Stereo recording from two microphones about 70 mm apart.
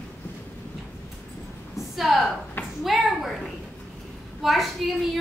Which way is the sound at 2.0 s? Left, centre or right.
Centre.